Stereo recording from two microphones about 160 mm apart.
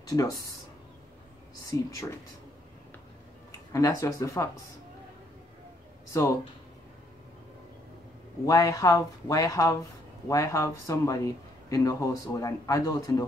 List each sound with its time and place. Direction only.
0.0 s speech: 20° left (ahead or behind)
1.7 s speech: 20° left (ahead or behind)
3.7 s speech: 20° left (ahead or behind)
8.5 s speech: 20° left (ahead or behind)